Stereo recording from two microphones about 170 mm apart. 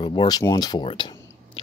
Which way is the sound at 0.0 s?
25° left (ahead or behind).